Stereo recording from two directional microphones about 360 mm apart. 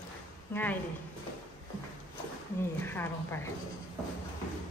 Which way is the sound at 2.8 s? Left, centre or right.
Centre.